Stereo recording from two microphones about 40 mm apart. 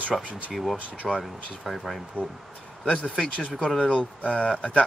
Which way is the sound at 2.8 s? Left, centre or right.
Centre.